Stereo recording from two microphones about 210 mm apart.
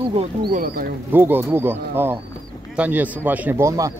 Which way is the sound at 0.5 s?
45° right (ahead or behind).